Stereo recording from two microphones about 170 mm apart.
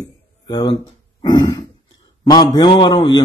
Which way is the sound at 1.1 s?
25° left (ahead or behind).